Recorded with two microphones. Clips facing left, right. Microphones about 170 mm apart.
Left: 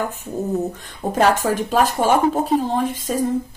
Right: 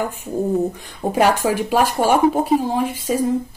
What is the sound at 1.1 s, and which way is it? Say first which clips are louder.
Speech: even; 10° right (ahead or behind).